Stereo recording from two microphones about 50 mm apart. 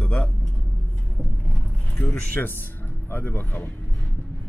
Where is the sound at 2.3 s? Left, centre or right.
Left.